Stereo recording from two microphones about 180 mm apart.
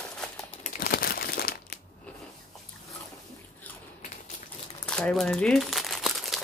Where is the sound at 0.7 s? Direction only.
55° left (ahead or behind).